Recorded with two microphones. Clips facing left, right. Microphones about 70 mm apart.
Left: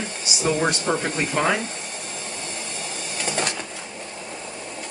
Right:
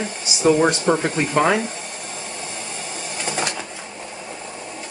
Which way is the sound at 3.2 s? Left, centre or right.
Centre.